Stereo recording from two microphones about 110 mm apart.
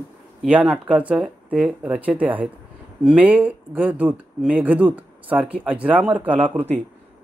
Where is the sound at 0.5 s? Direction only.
10° right (ahead or behind).